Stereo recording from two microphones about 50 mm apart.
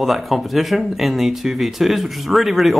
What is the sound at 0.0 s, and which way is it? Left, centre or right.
Speech, centre.